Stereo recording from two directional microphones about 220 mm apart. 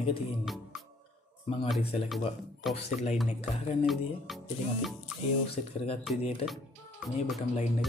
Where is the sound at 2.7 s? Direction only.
30° left (ahead or behind).